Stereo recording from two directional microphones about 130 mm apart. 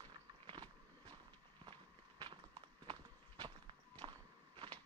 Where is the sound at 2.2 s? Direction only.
40° right (ahead or behind).